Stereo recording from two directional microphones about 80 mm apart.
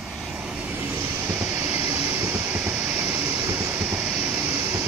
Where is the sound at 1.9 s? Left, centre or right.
Right.